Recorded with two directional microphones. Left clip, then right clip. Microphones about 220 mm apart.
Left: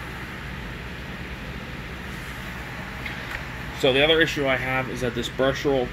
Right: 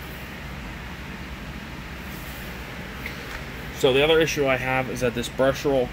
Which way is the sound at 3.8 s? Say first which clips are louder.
Even; 15° right (ahead or behind).